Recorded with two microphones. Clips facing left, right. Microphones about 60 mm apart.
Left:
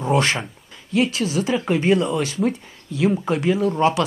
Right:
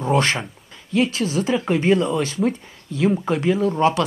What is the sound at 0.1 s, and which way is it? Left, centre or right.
Speech, right.